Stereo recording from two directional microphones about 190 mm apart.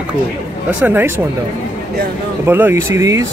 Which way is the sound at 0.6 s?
10° right (ahead or behind).